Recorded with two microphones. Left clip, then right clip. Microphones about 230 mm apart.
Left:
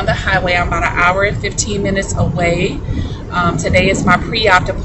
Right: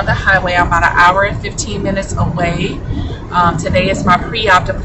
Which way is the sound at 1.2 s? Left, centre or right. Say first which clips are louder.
Even; right.